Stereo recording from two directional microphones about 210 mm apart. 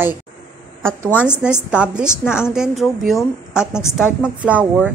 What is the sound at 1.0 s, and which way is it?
A woman's voice, 5° right (ahead or behind).